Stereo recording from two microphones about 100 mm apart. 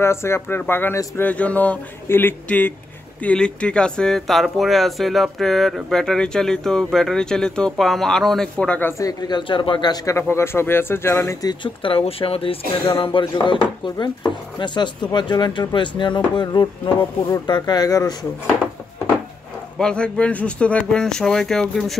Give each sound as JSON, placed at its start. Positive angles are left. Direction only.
{"t": 0.0, "sound": "speech", "side_deg": 25}
{"t": 9.3, "sound": "speech", "side_deg": 55}
{"t": 10.1, "sound": "speech", "side_deg": 25}
{"t": 11.4, "sound": "speech", "side_deg": 55}
{"t": 13.2, "sound": "speech", "side_deg": 50}
{"t": 19.8, "sound": "speech", "side_deg": 10}